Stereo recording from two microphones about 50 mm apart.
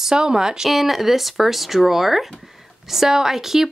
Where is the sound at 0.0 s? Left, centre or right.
Centre.